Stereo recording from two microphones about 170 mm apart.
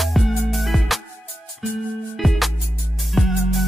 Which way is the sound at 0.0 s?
Centre (ahead or behind).